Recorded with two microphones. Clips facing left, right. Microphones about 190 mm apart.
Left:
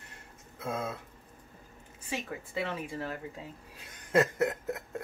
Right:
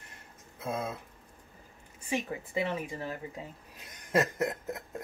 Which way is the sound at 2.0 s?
15° right (ahead or behind).